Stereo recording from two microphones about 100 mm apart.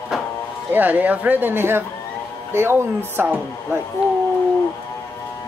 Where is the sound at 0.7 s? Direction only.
15° right (ahead or behind).